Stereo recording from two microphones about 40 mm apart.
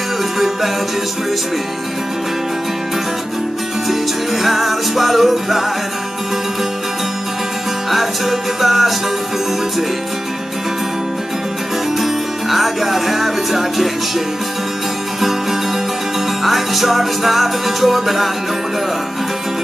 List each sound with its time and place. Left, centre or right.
4.4 s music: centre
7.9 s music: centre
12.0 s music: centre
16.4 s music: centre